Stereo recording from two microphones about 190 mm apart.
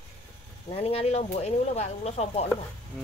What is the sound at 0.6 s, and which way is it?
Speech, 30° left (ahead or behind).